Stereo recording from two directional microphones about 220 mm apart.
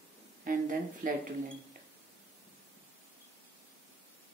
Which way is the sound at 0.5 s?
40° right (ahead or behind).